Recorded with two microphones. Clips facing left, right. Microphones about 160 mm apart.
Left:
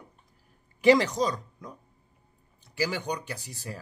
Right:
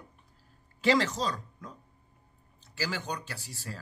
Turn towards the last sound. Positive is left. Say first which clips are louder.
# left 3 dB
turn(degrees=15)  # may be behind; listen again after turning